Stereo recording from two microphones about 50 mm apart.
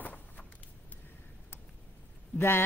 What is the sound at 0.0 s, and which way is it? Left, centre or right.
Vehicle, left.